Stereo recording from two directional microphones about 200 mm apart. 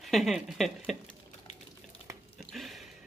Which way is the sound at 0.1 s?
Centre (ahead or behind).